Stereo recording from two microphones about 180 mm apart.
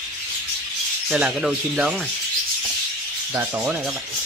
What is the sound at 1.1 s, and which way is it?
Speech, 5° right (ahead or behind).